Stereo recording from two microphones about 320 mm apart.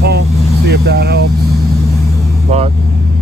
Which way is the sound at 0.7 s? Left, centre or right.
Right.